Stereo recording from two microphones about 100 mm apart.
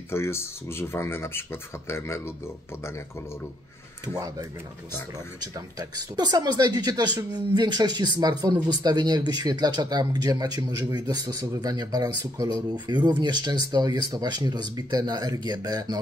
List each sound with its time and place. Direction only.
0.1 s speech: 25° left (ahead or behind)
5.5 s speech: 40° right (ahead or behind)